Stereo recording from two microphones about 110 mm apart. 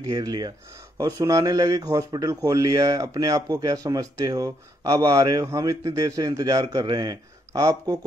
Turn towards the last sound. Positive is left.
turn(degrees=-35)  # may be behind; listen again after turning